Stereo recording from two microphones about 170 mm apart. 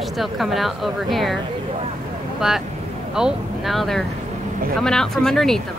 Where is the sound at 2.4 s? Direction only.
Centre (ahead or behind).